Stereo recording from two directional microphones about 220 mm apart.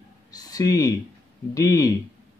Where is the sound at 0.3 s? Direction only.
15° left (ahead or behind).